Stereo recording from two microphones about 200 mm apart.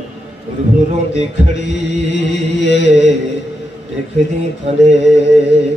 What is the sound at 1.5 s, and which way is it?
Mantra, 60° left (ahead or behind).